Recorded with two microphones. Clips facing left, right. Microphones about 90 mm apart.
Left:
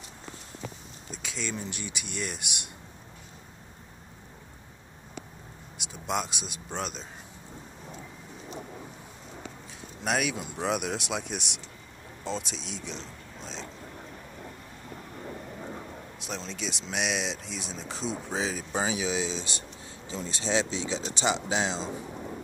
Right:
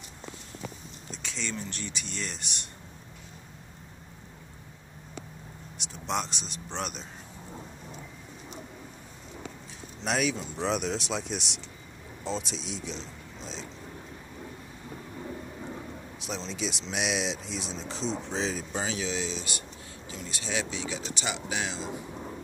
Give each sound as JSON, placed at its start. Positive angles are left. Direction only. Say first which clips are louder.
{"t": 1.1, "sound": "speech", "louder": "left 1 dB", "side_deg": 5}
{"t": 5.8, "sound": "speech", "louder": "left 1 dB", "side_deg": 5}
{"t": 10.0, "sound": "speech", "louder": "even", "side_deg": 5}
{"t": 16.2, "sound": "speech", "louder": "right 2 dB", "side_deg": 0}